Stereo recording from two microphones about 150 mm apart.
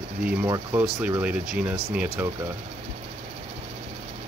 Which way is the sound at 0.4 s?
20° right (ahead or behind).